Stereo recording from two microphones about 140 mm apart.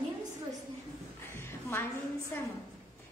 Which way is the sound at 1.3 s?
15° left (ahead or behind).